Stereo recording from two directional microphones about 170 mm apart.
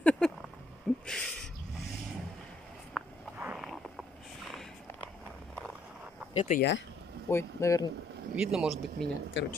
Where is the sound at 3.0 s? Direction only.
5° left (ahead or behind).